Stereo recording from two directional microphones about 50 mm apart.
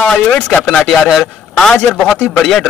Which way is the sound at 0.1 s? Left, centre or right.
Centre.